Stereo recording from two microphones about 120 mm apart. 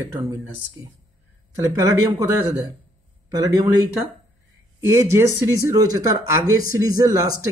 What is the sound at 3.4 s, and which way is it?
Speech, 30° right (ahead or behind).